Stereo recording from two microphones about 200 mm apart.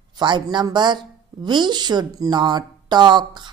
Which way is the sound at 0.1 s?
20° right (ahead or behind).